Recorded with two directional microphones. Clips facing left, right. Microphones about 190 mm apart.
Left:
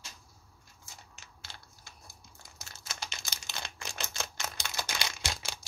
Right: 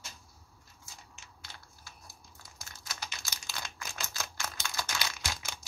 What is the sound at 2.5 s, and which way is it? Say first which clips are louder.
Crumpling: even; 25° left (ahead or behind).